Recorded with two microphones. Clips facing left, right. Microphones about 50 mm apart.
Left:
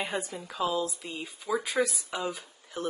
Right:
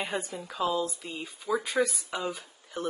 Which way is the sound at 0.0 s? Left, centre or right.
Centre.